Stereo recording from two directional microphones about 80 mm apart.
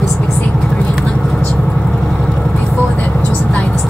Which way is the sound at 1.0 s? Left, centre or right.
Centre.